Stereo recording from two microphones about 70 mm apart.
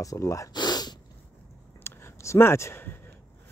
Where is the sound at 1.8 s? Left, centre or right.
Left.